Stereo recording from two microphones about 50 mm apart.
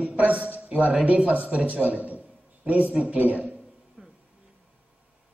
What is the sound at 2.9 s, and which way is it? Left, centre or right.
Speech, right.